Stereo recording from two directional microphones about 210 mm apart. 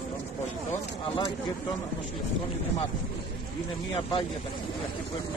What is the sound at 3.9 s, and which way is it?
Speech, 25° left (ahead or behind).